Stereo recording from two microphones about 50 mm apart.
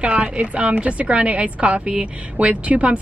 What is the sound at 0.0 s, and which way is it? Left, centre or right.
A woman's voice, right.